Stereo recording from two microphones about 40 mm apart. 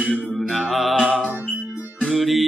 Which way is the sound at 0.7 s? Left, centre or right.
Centre.